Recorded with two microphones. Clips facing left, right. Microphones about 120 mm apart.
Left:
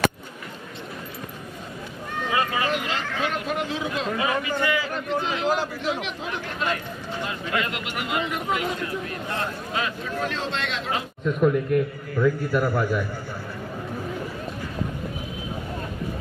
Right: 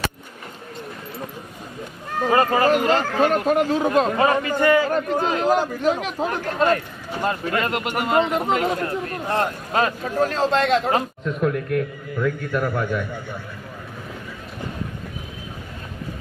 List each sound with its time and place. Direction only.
2.1 s speech: 40° right (ahead or behind)
11.4 s a man's voice: 10° left (ahead or behind)